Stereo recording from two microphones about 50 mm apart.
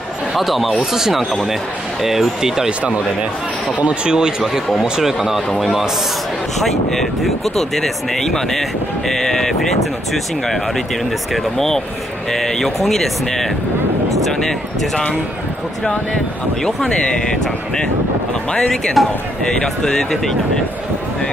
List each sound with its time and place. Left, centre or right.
0.3 s speech: centre
2.8 s speech: right
4.4 s speech: centre
4.8 s speech: centre
16.6 s speech: centre
19.0 s speech: centre